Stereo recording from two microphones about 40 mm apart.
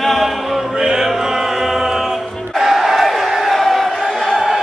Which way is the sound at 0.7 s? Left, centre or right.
Centre.